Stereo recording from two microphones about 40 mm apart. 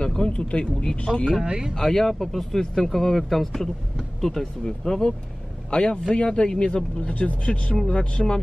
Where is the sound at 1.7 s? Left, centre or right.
Centre.